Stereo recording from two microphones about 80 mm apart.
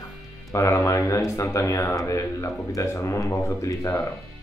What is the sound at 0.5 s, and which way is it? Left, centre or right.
Speech, left.